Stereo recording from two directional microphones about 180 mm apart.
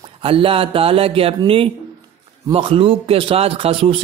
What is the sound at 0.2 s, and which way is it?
A man's voice, 30° right (ahead or behind).